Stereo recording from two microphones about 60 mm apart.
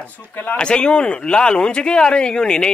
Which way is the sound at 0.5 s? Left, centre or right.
Centre.